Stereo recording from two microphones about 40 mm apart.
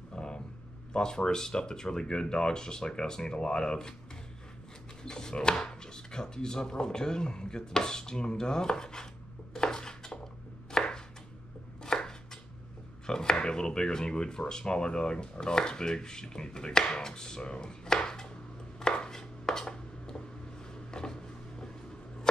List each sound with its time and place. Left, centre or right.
0.1 s vehicle: left
0.9 s speech: centre
5.0 s chopping: centre
13.0 s speech: centre
18.8 s chopping: centre
20.7 s a sound: centre